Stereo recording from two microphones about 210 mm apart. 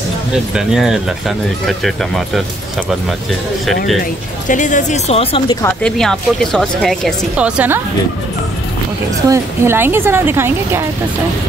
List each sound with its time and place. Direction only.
0.3 s speech: 5° right (ahead or behind)
4.5 s speech: 35° left (ahead or behind)
5.6 s speech: 5° left (ahead or behind)
9.3 s a woman's voice: 10° right (ahead or behind)